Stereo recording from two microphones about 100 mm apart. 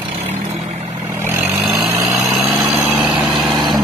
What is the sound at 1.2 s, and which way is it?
Vehicle, 20° right (ahead or behind).